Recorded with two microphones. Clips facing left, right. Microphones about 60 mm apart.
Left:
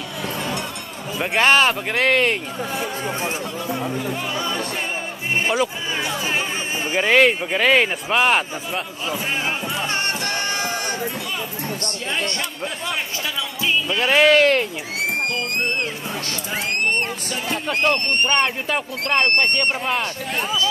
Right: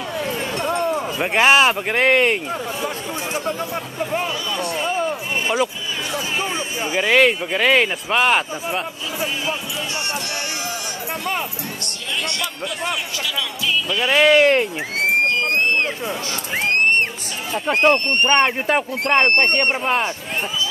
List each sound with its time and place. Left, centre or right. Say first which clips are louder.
0.6 s a sound: right 8 dB; right
1.2 s speech: right 1 dB; centre
4.0 s music: right 4 dB; right
5.5 s speech: right 1 dB; centre
7.0 s speech: even; centre
13.8 s speech: even; left
14.3 s speech: right 1 dB; centre
15.0 s music: right 5 dB; right
17.6 s speech: right 5 dB; right